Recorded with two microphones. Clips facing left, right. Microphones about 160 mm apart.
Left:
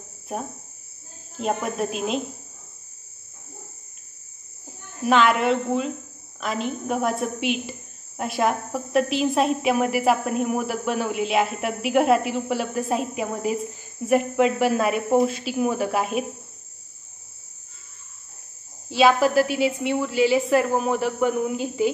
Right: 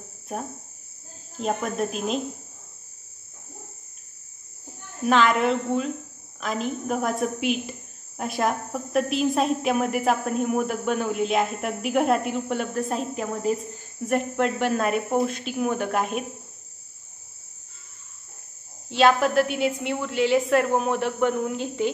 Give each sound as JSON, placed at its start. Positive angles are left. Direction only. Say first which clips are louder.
{"t": 1.4, "sound": "speech", "louder": "left 1 dB", "side_deg": 0}
{"t": 5.0, "sound": "speech", "louder": "left 1 dB", "side_deg": 0}
{"t": 18.9, "sound": "speech", "louder": "left 1 dB", "side_deg": 5}